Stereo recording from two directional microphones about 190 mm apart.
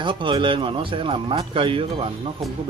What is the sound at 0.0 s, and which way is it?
Speech, 25° right (ahead or behind).